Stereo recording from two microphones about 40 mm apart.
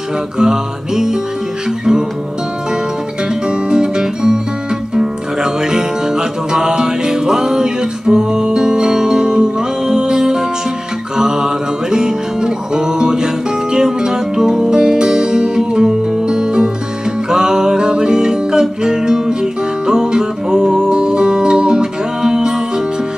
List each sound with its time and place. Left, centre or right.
0.4 s music: centre
3.4 s music: centre